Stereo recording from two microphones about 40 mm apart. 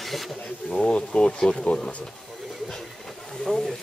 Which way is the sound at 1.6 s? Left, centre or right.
Centre.